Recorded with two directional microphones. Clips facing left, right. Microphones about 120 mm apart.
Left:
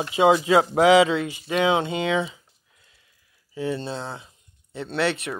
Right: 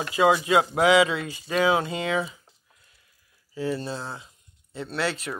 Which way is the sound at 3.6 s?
25° left (ahead or behind).